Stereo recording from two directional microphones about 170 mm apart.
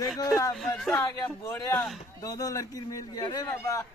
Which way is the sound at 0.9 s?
15° left (ahead or behind).